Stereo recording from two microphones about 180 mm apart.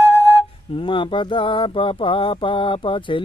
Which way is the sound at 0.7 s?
30° left (ahead or behind).